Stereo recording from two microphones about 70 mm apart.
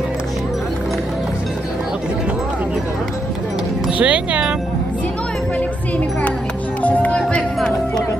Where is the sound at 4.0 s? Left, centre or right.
Centre.